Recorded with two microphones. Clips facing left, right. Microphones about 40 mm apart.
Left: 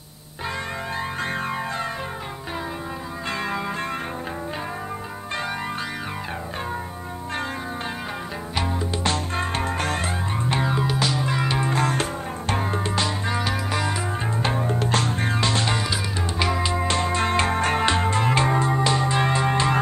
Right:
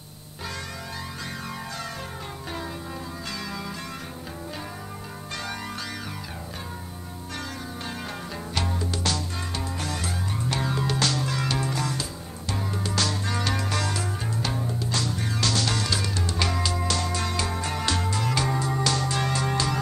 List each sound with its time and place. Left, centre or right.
9.0 s music: left
10.4 s music: left
11.7 s music: left; by 13.9 s centre
14.4 s music: left
15.4 s music: left